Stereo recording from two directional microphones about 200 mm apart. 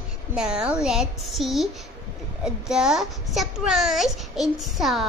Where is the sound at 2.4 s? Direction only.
5° right (ahead or behind).